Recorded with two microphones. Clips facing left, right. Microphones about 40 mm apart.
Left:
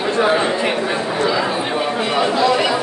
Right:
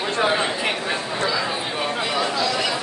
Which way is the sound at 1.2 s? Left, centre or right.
Left.